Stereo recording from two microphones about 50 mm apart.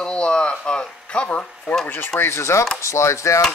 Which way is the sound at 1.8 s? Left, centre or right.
Left.